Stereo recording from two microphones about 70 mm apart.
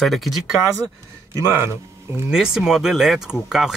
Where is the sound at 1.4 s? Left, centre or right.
Right.